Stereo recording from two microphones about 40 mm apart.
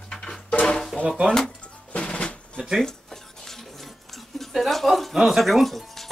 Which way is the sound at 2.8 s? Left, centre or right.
Centre.